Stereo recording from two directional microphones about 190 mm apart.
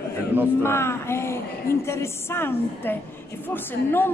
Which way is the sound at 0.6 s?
15° left (ahead or behind).